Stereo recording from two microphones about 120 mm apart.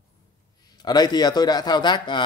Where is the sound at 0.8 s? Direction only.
35° left (ahead or behind).